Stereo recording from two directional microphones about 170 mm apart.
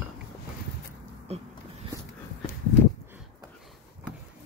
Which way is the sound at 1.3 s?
40° right (ahead or behind).